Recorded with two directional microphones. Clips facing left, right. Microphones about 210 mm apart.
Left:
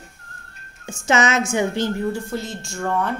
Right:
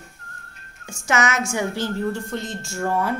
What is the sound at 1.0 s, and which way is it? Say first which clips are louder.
Speech: left 3 dB; 25° left (ahead or behind).